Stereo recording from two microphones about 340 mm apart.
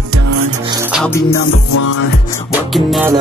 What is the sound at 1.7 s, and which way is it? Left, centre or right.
Music, left.